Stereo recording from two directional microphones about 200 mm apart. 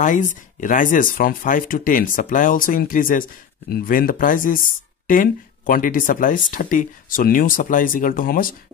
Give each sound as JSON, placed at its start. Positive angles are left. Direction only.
{"t": 0.0, "sound": "speech", "side_deg": 40}